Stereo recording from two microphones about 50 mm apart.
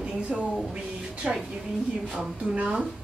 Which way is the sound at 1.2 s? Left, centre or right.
Centre.